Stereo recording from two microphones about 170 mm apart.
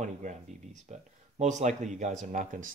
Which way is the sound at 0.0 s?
45° right (ahead or behind).